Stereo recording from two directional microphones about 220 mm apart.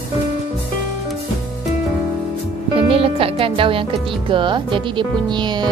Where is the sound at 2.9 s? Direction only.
25° right (ahead or behind).